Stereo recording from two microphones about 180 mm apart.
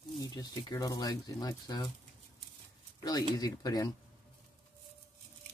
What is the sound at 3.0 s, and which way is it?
Speech, 20° left (ahead or behind).